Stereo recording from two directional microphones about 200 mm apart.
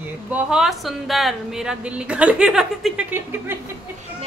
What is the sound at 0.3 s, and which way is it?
Speech, 5° right (ahead or behind).